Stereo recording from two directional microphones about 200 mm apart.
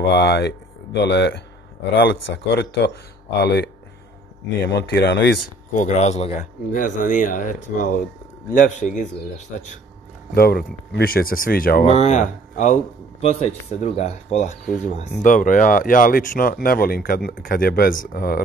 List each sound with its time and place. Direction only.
0.1 s speech: 55° left (ahead or behind)
5.8 s speech: 35° left (ahead or behind)
10.3 s speech: 50° left (ahead or behind)